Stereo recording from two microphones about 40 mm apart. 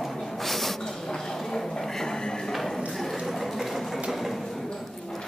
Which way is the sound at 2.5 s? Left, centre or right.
Centre.